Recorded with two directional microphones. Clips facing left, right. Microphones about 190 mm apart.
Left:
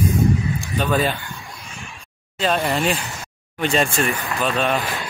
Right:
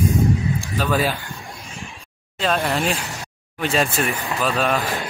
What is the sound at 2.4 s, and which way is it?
Speech, centre (ahead or behind).